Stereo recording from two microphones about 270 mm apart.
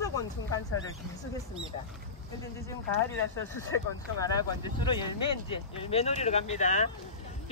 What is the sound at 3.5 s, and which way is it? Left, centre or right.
Speech, centre.